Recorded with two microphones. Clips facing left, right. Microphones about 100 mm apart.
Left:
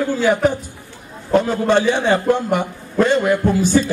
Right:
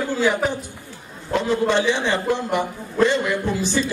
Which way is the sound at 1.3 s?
45° left (ahead or behind).